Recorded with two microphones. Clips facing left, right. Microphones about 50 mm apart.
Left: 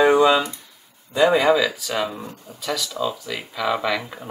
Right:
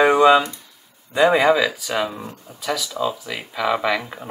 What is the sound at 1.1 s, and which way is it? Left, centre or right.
Speech, centre.